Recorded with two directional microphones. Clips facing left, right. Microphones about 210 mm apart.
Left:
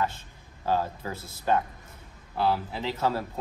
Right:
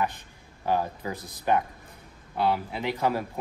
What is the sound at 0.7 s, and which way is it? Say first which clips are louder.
Speech: right 1 dB; 15° right (ahead or behind).